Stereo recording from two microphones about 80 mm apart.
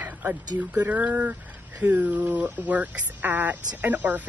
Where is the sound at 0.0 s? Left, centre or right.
Right.